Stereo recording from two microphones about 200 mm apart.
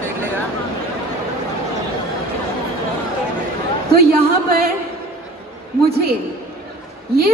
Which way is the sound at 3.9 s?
50° right (ahead or behind).